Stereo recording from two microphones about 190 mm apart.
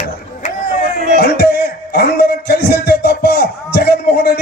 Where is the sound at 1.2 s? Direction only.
60° left (ahead or behind).